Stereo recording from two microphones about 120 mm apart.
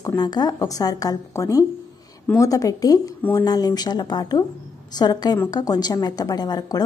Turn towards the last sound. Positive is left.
turn(degrees=35)  # may be behind; listen again after turning